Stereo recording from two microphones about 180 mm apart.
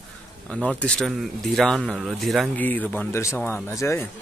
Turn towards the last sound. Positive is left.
turn(degrees=15)  # may be behind; listen again after turning